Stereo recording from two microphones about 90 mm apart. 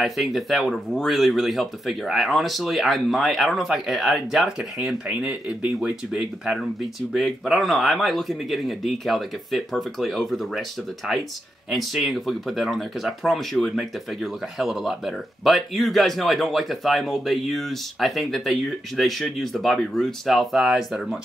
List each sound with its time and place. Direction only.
0.0 s speech: centre (ahead or behind)
11.7 s speech: centre (ahead or behind)